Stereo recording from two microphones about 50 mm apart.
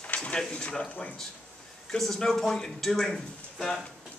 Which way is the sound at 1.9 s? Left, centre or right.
Centre.